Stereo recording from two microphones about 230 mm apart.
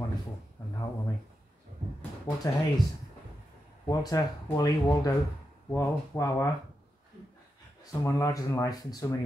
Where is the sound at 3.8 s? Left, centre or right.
Centre.